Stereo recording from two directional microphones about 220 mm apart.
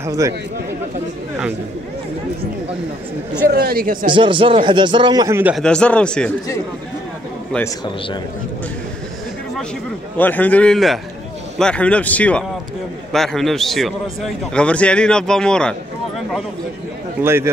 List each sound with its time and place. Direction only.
0.0 s a man's voice: 15° right (ahead or behind)
3.4 s speech: 45° right (ahead or behind)
4.1 s speech: 20° right (ahead or behind)
5.6 s a man's voice: 5° left (ahead or behind)
7.5 s a man's voice: 15° left (ahead or behind)
10.1 s a man's voice: 10° left (ahead or behind)
17.2 s a man's voice: 10° right (ahead or behind)